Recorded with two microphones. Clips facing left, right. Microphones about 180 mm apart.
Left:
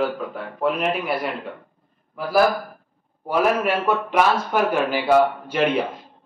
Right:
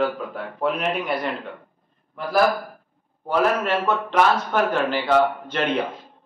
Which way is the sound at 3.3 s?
10° left (ahead or behind).